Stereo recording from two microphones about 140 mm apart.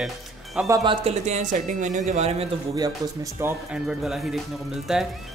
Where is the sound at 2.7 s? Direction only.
25° right (ahead or behind).